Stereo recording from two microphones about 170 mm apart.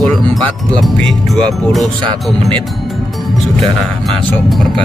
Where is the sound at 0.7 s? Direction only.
Centre (ahead or behind).